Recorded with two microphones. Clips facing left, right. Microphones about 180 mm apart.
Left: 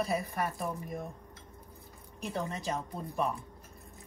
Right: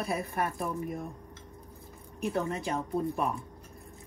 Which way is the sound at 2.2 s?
60° right (ahead or behind).